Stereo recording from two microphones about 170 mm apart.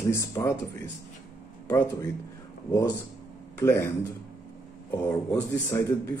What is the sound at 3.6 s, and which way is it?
Speech, 15° left (ahead or behind).